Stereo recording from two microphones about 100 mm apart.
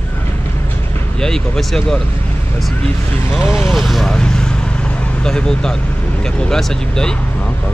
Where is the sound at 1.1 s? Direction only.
5° left (ahead or behind).